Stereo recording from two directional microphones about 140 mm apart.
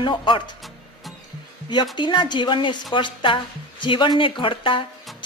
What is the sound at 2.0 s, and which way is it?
Speech, 35° left (ahead or behind).